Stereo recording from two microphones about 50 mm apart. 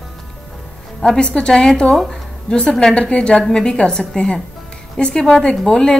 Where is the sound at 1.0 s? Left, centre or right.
Centre.